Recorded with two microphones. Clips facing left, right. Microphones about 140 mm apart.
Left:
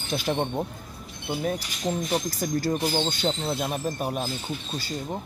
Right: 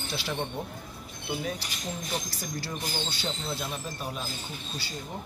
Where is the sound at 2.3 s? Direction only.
50° left (ahead or behind).